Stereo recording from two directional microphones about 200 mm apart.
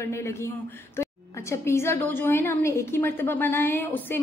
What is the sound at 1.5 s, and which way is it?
A woman's voice, 15° left (ahead or behind).